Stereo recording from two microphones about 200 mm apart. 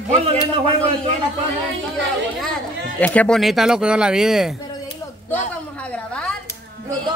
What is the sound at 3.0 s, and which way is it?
Speech, 5° left (ahead or behind).